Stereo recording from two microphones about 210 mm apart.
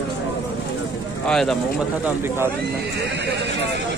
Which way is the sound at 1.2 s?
5° left (ahead or behind).